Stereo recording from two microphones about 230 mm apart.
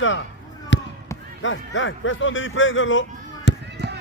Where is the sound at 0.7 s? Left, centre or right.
Left.